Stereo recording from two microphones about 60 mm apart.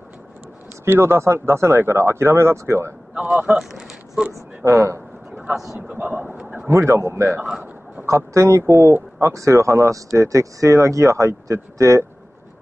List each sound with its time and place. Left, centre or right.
0.8 s speech: right
3.5 s a sound: centre
4.6 s speech: right
5.9 s speech: right
6.7 s speech: right